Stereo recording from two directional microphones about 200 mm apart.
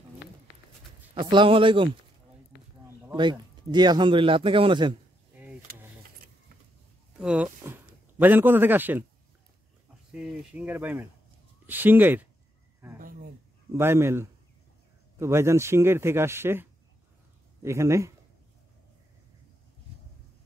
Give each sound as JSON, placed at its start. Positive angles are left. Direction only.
{"t": 1.1, "sound": "a man's voice", "side_deg": -25}
{"t": 2.5, "sound": "a sound", "side_deg": 55}
{"t": 3.2, "sound": "a man's voice", "side_deg": -20}
{"t": 5.3, "sound": "a sound", "side_deg": -10}
{"t": 7.2, "sound": "speech", "side_deg": -5}
{"t": 10.1, "sound": "speech", "side_deg": -5}
{"t": 13.7, "sound": "speech", "side_deg": -15}